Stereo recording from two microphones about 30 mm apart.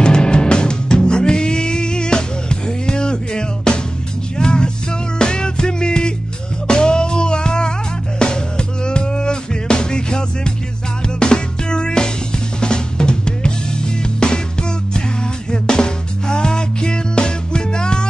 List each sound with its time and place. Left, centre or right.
0.0 s music: left
12.5 s drum: left
14.2 s music: left
15.5 s music: left